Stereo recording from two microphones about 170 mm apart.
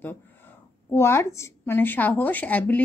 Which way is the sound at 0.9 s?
15° left (ahead or behind).